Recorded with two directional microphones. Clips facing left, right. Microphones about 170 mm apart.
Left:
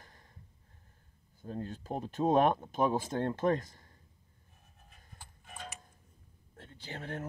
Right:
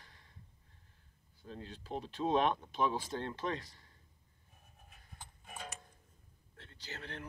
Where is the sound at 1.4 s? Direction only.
50° left (ahead or behind).